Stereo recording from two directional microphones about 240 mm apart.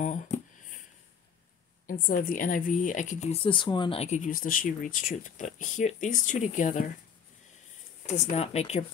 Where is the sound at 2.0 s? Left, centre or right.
Left.